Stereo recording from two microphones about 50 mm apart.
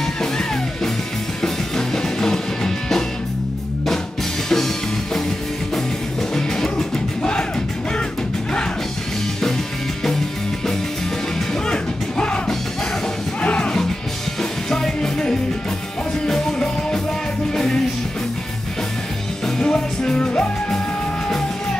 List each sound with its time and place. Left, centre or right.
0.0 s music: centre
4.5 s music: centre
6.3 s music: centre
11.6 s music: centre
16.5 s music: centre
19.4 s music: centre